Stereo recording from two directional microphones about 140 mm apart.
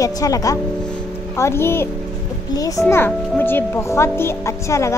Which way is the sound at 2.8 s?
15° left (ahead or behind).